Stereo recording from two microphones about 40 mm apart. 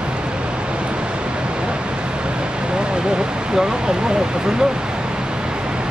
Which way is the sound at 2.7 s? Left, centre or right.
Right.